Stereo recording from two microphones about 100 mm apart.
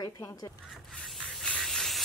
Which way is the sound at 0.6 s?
Centre (ahead or behind).